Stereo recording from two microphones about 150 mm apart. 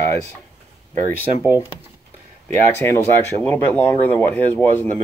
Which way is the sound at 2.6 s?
15° left (ahead or behind).